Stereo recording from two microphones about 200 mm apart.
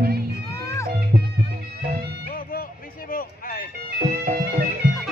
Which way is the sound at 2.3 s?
45° left (ahead or behind).